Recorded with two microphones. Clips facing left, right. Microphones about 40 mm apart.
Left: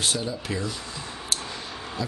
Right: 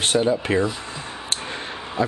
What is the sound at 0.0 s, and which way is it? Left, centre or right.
Speech, right.